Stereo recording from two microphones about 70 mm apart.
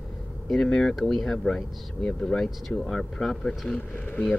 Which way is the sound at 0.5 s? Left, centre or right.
Centre.